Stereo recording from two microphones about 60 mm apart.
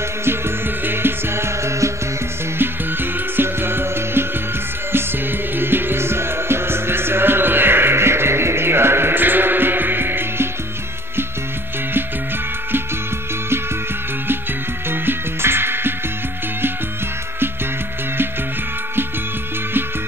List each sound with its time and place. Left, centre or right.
0.8 s music: right
2.6 s music: right
5.6 s music: right
14.9 s music: right